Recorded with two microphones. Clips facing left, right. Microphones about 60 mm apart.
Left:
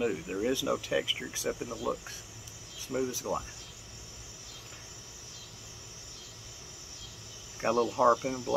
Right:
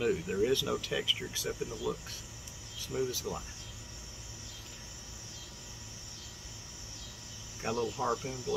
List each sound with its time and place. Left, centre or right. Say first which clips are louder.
0.0 s speech: right 1 dB; centre
7.8 s speech: left 9 dB; left
8.1 s speech: left 8 dB; left